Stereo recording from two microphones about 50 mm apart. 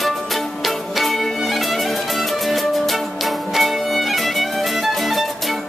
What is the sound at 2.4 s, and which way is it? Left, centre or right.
Music, centre.